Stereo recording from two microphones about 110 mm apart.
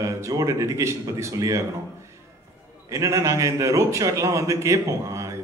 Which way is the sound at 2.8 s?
30° right (ahead or behind).